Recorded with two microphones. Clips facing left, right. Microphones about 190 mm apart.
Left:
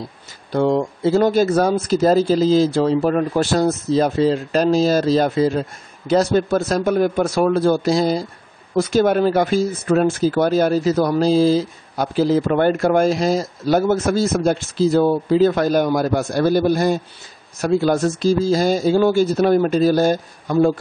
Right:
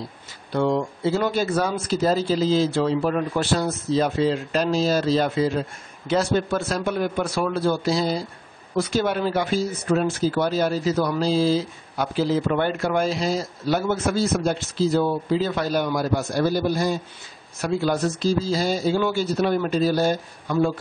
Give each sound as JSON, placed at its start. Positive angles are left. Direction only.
{"t": 0.5, "sound": "speech", "side_deg": 40}